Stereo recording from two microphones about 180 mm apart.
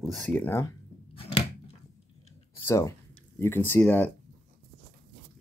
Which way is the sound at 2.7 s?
15° left (ahead or behind).